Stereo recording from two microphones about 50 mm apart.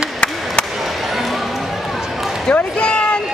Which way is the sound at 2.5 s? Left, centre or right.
Left.